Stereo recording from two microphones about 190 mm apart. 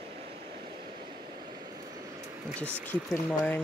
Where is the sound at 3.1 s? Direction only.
10° left (ahead or behind).